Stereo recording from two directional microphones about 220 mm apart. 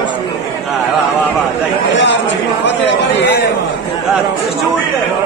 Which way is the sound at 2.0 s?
55° left (ahead or behind).